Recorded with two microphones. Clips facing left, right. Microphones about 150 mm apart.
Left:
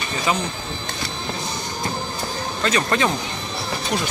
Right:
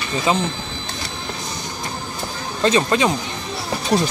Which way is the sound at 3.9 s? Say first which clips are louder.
Right 7 dB; 35° right (ahead or behind).